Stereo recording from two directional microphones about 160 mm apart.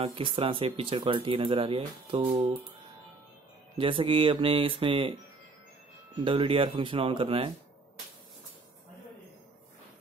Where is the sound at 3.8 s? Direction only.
35° right (ahead or behind).